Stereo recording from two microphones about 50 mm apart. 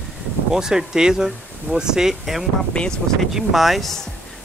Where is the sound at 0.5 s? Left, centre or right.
Centre.